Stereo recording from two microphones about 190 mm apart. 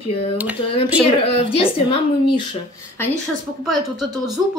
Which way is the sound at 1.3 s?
30° left (ahead or behind).